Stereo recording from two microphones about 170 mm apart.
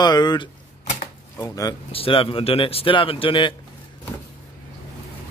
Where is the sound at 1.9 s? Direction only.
35° left (ahead or behind).